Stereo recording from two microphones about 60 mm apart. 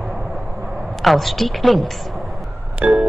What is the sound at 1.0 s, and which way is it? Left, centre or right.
Speech, centre.